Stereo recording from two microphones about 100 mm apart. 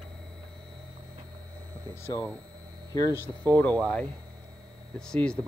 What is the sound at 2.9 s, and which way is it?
Speech, 35° left (ahead or behind).